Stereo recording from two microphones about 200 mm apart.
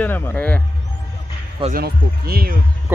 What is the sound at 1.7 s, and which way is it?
Speech, 50° right (ahead or behind).